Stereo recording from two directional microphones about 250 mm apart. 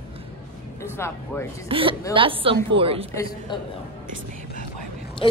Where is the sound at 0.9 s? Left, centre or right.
Centre.